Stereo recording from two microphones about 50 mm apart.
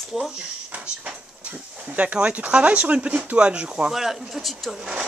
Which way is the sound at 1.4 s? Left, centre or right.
Right.